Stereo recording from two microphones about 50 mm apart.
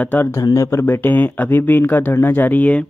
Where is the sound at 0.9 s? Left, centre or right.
Left.